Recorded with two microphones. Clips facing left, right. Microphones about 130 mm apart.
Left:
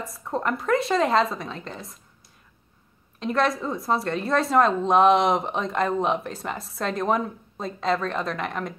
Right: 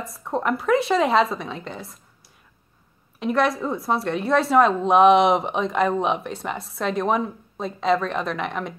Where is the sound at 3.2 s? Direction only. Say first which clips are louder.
Right 2 dB; centre (ahead or behind).